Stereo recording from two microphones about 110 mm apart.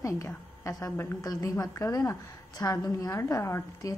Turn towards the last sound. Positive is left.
turn(degrees=25)  # may be behind; listen again after turning